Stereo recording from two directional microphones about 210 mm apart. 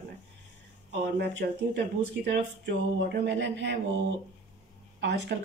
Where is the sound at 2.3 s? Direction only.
55° right (ahead or behind).